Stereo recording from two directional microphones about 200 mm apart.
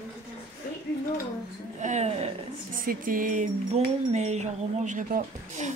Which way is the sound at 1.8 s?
35° right (ahead or behind).